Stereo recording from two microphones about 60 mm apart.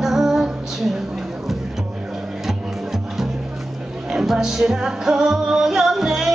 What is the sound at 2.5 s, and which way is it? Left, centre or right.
Music, centre.